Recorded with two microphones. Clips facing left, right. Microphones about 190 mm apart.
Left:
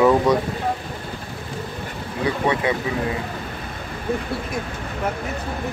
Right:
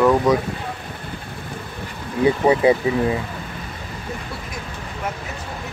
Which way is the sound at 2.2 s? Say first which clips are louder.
Right 6 dB; 30° right (ahead or behind).